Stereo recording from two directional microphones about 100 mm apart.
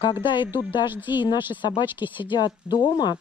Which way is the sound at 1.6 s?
45° left (ahead or behind).